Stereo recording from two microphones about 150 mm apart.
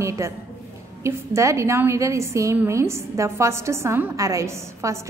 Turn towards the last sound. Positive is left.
turn(degrees=-20)  # may be behind; listen again after turning